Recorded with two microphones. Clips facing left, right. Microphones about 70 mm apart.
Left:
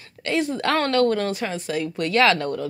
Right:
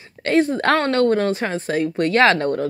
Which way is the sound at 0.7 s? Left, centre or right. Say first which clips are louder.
Right 1 dB; right.